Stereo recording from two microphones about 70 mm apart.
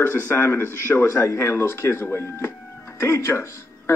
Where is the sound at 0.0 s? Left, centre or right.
Left.